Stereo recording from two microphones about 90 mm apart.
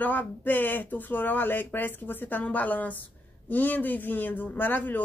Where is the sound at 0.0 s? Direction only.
20° left (ahead or behind).